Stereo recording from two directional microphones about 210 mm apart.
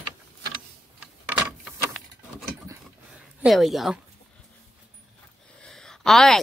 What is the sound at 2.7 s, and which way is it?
Dog, 5° right (ahead or behind).